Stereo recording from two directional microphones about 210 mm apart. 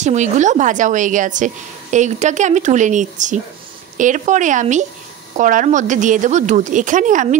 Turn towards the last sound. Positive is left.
turn(degrees=-35)  # may be behind; listen again after turning